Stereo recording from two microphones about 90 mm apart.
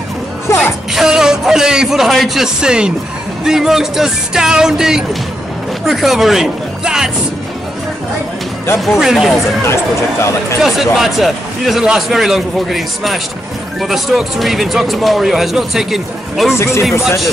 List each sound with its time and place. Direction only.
0.5 s music: 30° left (ahead or behind)
0.9 s speech: 5° right (ahead or behind)
8.7 s speech: 5° right (ahead or behind)
10.6 s speech: 5° right (ahead or behind)
16.5 s speech: 30° left (ahead or behind)